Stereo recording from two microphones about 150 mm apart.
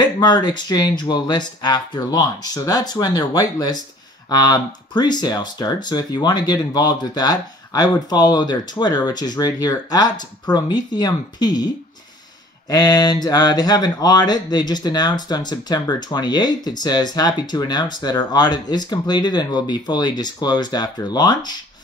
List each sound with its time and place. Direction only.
0.2 s speech: 30° left (ahead or behind)